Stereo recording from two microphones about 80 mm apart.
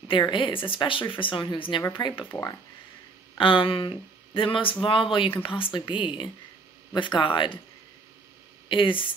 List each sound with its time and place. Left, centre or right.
0.1 s speech: left
1.9 s speech: left
3.3 s speech: left
8.6 s speech: left